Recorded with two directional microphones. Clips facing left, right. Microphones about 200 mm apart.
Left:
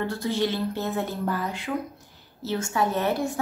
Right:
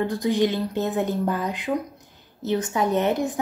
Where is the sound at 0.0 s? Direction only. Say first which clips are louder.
Right 4 dB; 15° right (ahead or behind).